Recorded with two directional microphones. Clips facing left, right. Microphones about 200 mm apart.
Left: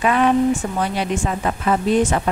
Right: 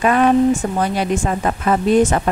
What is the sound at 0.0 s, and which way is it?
Speech, 45° right (ahead or behind).